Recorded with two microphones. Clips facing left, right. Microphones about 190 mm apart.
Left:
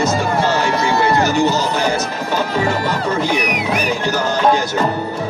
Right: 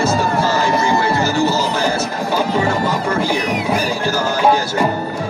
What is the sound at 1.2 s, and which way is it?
Music, 20° left (ahead or behind).